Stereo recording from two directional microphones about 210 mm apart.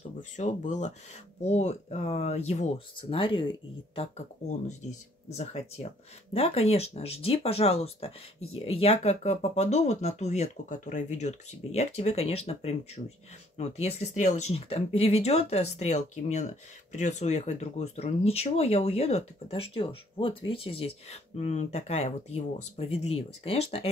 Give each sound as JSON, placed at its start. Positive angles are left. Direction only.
{"t": 0.4, "sound": "speech", "side_deg": 35}